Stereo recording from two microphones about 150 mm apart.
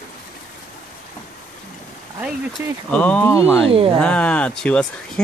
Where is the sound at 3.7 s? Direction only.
40° right (ahead or behind).